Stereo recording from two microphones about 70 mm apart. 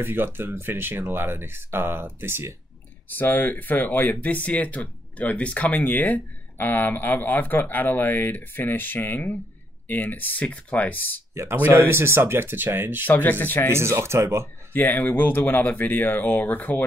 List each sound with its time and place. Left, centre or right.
0.0 s speech: right
3.1 s speech: left
11.7 s speech: right
13.0 s speech: left
13.7 s speech: right
14.7 s speech: left